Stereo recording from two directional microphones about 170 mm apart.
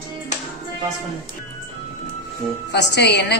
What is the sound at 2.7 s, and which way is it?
Speech, 85° left.